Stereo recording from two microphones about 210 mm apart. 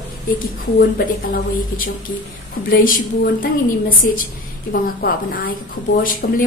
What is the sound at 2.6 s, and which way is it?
Speech, 45° left (ahead or behind).